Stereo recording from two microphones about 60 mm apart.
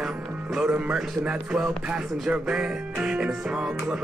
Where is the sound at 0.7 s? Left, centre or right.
Centre.